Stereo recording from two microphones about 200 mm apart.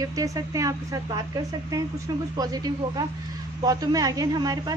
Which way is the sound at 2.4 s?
20° right (ahead or behind).